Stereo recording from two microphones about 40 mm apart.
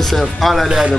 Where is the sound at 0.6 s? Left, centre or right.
Centre.